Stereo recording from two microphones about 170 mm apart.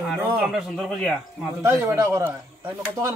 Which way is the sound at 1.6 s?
15° right (ahead or behind).